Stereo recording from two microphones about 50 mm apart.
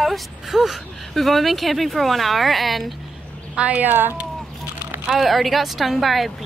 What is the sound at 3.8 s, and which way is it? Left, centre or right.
Speech, right.